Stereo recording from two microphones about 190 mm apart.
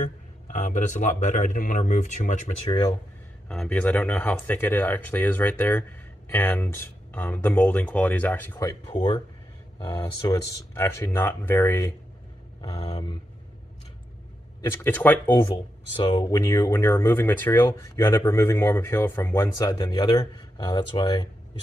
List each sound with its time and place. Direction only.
0.0 s speech: 40° left (ahead or behind)
3.4 s speech: 5° left (ahead or behind)
12.7 s speech: 30° left (ahead or behind)
14.6 s speech: 10° left (ahead or behind)
15.5 s speech: 25° left (ahead or behind)